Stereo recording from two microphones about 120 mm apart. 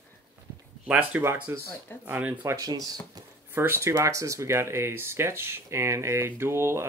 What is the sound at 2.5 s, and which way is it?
Speech, 30° right (ahead or behind).